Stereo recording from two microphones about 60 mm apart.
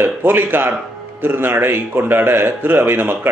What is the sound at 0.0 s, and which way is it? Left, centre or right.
Speech, right.